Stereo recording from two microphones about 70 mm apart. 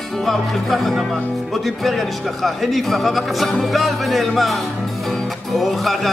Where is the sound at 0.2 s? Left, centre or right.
Centre.